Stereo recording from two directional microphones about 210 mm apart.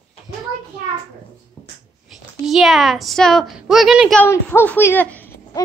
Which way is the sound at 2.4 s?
Centre (ahead or behind).